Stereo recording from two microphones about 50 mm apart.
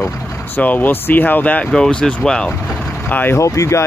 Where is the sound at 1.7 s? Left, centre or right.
Centre.